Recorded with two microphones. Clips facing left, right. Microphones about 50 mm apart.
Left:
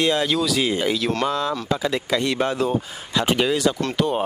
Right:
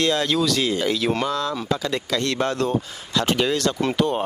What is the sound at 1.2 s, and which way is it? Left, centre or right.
Speech, centre.